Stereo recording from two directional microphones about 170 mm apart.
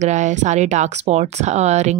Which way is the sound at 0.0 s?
45° right (ahead or behind).